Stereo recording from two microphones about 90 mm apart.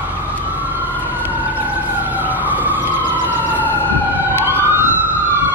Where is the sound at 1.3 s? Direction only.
20° right (ahead or behind).